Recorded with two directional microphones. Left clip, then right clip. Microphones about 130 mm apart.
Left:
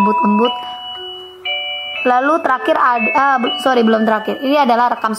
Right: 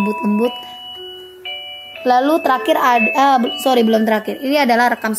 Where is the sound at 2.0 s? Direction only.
15° right (ahead or behind).